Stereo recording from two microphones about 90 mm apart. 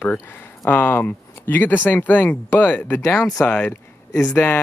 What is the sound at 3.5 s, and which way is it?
Speech, 15° left (ahead or behind).